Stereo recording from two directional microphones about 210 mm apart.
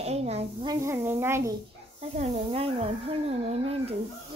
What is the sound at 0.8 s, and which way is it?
Speech, 10° right (ahead or behind).